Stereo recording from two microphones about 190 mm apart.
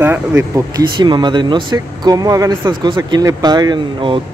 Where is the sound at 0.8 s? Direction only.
25° right (ahead or behind).